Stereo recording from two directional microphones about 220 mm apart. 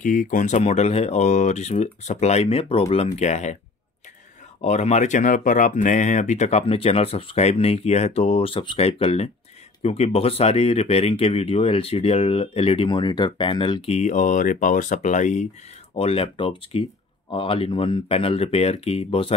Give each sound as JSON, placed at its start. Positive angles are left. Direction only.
{"t": 0.0, "sound": "speech", "side_deg": 35}
{"t": 4.6, "sound": "speech", "side_deg": 30}